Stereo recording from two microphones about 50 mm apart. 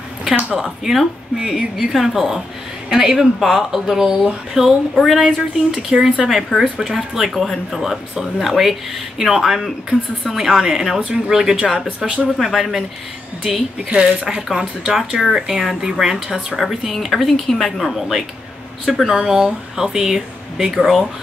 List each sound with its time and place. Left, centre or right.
0.6 s speech: centre
1.4 s speech: centre
1.8 s speech: centre
6.2 s speech: centre
7.3 s speech: centre
13.9 s speech: centre